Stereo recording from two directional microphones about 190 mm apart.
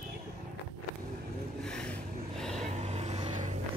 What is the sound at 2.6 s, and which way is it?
Vehicle, 35° right (ahead or behind).